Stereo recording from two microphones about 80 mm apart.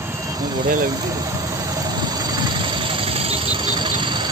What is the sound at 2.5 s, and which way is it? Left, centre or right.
Engine, right.